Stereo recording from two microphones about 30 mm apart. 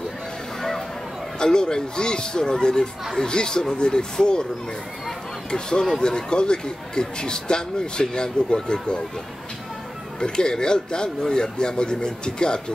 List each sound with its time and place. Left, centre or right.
0.6 s a sound: centre
1.4 s speech: left
5.5 s speech: left
10.2 s speech: left